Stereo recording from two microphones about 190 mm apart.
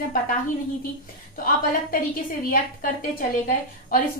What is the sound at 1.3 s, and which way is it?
A woman's voice, 45° left (ahead or behind).